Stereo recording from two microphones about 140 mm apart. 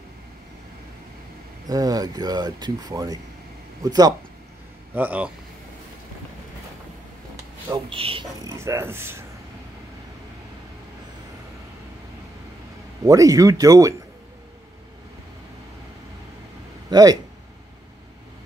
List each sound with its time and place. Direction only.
1.7 s speech: 25° right (ahead or behind)
4.9 s speech: 10° right (ahead or behind)
7.7 s speech: 40° right (ahead or behind)
8.5 s speech: 20° right (ahead or behind)
13.0 s speech: 25° right (ahead or behind)
16.9 s speech: 30° right (ahead or behind)